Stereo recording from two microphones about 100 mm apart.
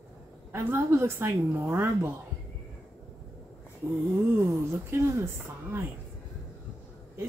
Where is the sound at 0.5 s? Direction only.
25° right (ahead or behind).